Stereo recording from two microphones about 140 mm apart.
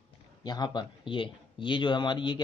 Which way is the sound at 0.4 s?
30° left (ahead or behind).